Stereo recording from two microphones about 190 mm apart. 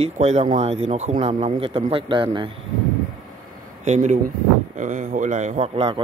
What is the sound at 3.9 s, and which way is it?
A man's voice, 40° right (ahead or behind).